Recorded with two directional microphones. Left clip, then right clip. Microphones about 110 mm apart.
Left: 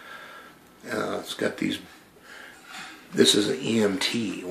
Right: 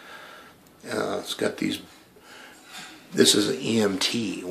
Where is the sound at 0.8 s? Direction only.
10° right (ahead or behind).